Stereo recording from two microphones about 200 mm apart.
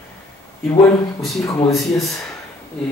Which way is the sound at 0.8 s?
15° left (ahead or behind).